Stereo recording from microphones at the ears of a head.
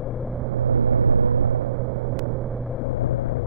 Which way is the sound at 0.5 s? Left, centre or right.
Right.